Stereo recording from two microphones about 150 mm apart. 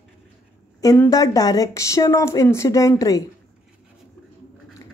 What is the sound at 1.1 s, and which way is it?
A woman's voice, 25° left (ahead or behind).